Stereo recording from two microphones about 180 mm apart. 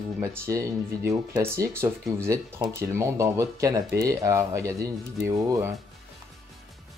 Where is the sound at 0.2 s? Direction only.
15° right (ahead or behind).